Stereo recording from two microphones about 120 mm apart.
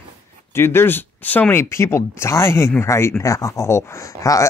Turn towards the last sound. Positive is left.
turn(degrees=25)  # may be behind; listen again after turning